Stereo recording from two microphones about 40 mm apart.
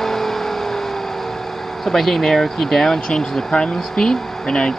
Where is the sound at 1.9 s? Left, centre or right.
Centre.